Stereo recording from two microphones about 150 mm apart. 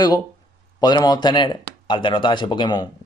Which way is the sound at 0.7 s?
30° left (ahead or behind).